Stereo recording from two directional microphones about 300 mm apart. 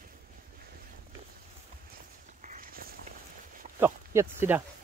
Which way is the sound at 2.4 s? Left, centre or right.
Right.